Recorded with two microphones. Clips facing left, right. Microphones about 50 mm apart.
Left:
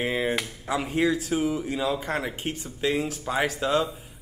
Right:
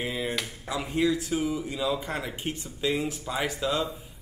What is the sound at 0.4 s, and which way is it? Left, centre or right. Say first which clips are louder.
Speech: left 4 dB; centre.